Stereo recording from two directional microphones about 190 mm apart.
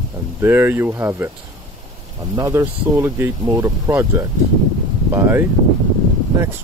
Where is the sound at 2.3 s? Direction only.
15° right (ahead or behind).